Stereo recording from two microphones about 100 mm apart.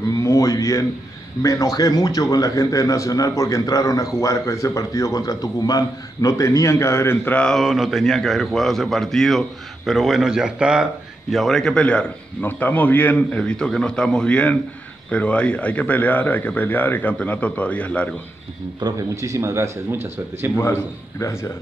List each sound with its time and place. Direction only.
0.2 s a sound: 35° left (ahead or behind)
1.4 s a man's voice: 35° left (ahead or behind)
7.3 s speech: 5° left (ahead or behind)
18.8 s a man's voice: 45° right (ahead or behind)
19.2 s speech: 30° right (ahead or behind)
21.2 s speech: 25° left (ahead or behind)